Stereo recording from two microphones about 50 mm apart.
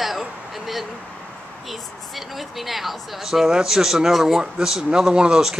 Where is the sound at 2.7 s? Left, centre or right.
Centre.